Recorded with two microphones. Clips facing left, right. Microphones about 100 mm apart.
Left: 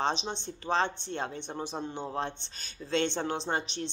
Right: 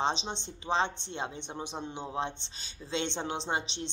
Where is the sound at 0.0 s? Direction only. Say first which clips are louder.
Left 1 dB; 20° right (ahead or behind).